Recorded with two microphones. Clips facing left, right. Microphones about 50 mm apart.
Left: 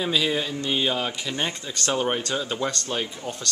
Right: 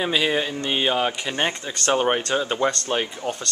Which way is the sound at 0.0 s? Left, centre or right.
Right.